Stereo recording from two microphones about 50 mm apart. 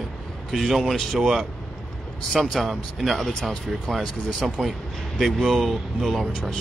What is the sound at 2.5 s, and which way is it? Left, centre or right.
Speech, centre.